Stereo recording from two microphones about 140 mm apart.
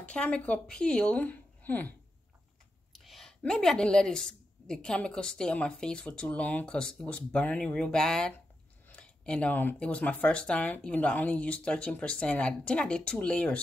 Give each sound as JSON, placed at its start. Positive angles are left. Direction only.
{"t": 0.0, "sound": "speech", "side_deg": 10}
{"t": 2.9, "sound": "a woman's voice", "side_deg": 0}